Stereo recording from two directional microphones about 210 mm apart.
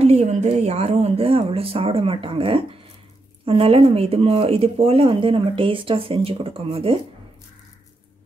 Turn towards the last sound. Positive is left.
turn(degrees=-25)  # may be behind; listen again after turning